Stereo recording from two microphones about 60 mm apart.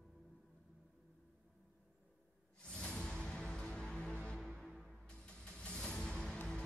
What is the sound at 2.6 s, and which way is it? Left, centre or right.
Music, centre.